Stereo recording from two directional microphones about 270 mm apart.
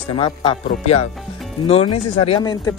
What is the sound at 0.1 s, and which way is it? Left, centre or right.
Speech, centre.